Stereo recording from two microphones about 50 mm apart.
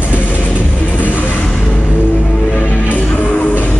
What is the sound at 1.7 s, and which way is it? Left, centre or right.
Music, left.